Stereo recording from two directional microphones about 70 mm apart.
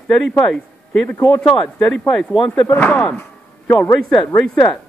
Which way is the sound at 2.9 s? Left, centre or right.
Centre.